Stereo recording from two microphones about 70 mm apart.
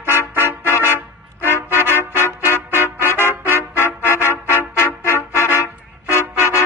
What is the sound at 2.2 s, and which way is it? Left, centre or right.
Music, right.